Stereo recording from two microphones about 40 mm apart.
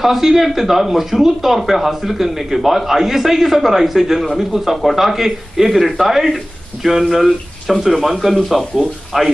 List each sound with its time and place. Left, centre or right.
0.0 s a man's voice: centre